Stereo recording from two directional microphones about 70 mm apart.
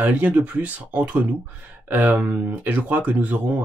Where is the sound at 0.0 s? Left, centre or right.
Right.